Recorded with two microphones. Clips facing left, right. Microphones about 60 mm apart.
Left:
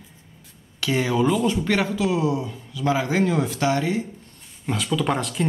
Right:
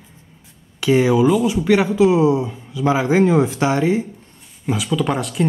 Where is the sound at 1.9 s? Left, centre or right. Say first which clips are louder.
Right 8 dB; right.